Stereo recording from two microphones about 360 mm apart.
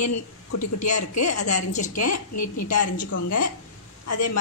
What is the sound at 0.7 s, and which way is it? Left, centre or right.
Speech, centre.